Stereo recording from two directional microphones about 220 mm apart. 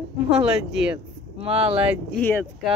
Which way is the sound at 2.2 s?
10° left (ahead or behind).